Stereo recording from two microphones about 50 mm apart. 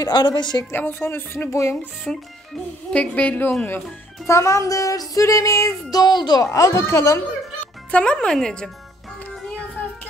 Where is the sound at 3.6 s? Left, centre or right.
Left.